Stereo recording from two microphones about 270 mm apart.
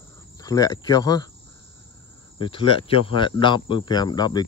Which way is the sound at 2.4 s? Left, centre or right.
Centre.